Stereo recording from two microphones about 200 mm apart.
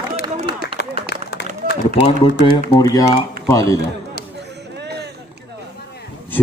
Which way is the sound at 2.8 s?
20° left (ahead or behind).